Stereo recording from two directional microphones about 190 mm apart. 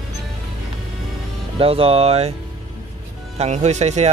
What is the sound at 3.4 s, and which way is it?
Speech, 35° right (ahead or behind).